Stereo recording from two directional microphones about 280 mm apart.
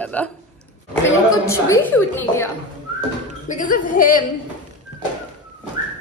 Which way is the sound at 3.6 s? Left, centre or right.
Left.